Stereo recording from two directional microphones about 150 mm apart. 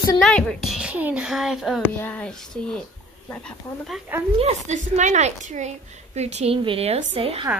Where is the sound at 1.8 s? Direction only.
10° left (ahead or behind).